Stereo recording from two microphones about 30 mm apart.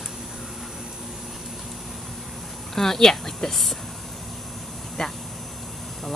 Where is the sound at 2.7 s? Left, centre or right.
Centre.